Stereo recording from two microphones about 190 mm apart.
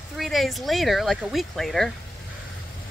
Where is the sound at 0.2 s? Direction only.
Centre (ahead or behind).